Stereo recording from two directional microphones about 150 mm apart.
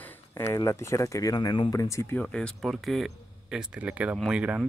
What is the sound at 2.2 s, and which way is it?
Speech, 5° left (ahead or behind).